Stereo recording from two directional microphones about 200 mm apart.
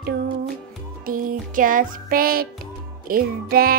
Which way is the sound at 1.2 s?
40° right (ahead or behind).